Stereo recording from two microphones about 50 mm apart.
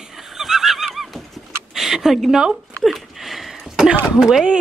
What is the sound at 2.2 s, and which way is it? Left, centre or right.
Speech, centre.